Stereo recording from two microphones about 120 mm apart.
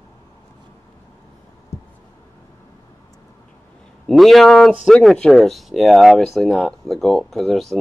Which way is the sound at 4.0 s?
Centre (ahead or behind).